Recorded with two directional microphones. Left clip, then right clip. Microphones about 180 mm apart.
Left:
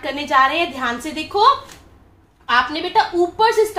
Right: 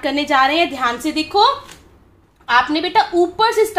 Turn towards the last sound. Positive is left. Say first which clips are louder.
# even
turn(degrees=-50)  # may be behind; listen again after turning